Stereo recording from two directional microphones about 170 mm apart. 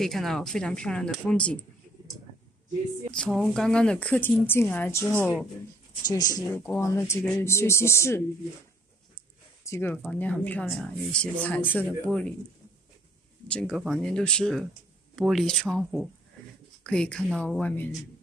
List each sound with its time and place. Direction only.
0.0 s speech: centre (ahead or behind)
3.1 s speech: 5° left (ahead or behind)
6.0 s speech: 25° left (ahead or behind)
9.7 s speech: 10° left (ahead or behind)
13.5 s speech: 5° left (ahead or behind)